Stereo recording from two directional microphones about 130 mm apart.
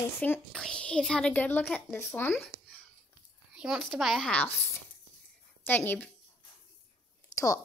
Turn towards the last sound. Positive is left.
turn(degrees=25)  # may be behind; listen again after turning